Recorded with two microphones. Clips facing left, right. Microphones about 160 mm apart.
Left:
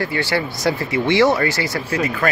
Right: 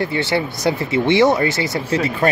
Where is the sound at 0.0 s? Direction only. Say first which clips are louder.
Right 2 dB; 20° right (ahead or behind).